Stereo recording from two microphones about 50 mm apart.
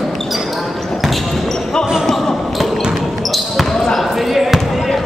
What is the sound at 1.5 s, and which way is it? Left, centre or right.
Basketball bounce, centre.